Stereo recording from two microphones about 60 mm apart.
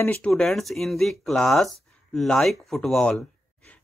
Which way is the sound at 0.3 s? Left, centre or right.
Centre.